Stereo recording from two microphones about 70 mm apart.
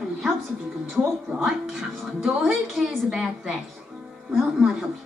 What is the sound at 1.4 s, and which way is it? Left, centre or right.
Speech, centre.